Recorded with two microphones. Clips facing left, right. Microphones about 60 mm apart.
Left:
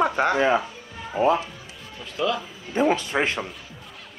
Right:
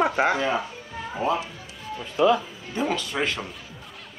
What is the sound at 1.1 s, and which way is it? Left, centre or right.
Speech, left.